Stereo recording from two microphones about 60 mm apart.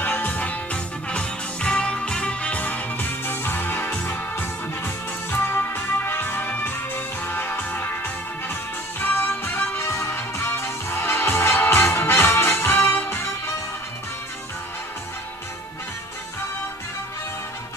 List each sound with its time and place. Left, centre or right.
0.0 s music: left
9.8 s music: left